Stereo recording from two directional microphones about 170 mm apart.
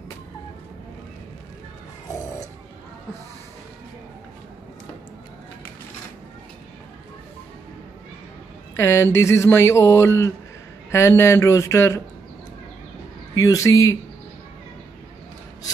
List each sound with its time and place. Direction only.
8.7 s speech: 15° left (ahead or behind)
13.3 s speech: 20° left (ahead or behind)